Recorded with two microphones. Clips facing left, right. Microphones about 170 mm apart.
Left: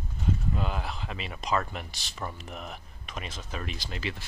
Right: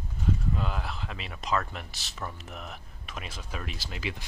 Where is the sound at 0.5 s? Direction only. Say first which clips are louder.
Left 1 dB; centre (ahead or behind).